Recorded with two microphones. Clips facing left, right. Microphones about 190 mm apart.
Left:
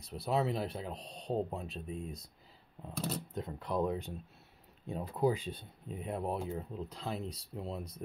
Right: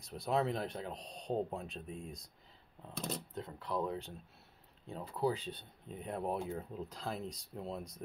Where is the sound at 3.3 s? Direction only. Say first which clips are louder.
Left 3 dB; 20° left (ahead or behind); by 8.0 s centre (ahead or behind).